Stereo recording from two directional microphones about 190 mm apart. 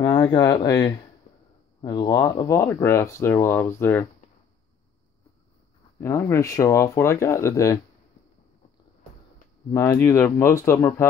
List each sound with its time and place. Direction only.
0.0 s speech: 20° left (ahead or behind)
5.9 s speech: 15° left (ahead or behind)
9.7 s speech: 15° left (ahead or behind)